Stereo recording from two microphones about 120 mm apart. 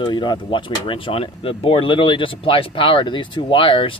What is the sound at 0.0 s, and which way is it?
Speech, 40° left (ahead or behind).